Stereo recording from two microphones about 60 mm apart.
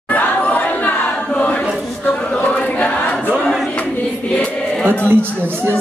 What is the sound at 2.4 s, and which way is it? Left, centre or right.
Choir, left.